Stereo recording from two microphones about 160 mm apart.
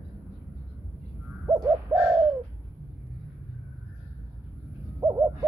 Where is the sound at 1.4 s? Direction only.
15° right (ahead or behind).